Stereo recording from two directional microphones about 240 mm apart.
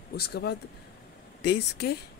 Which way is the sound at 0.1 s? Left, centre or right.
Left.